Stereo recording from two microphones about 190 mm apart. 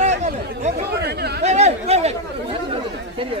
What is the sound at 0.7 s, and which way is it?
Chatter, 55° right (ahead or behind).